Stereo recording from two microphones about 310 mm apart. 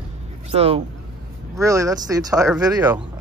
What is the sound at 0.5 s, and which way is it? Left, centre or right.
Speech, centre.